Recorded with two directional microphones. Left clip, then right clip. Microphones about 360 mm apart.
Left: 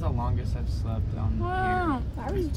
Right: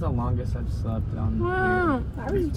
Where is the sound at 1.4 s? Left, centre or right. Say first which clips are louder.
Right 3 dB; centre.